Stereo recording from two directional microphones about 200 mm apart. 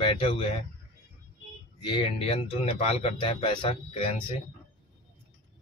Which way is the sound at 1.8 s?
25° left (ahead or behind).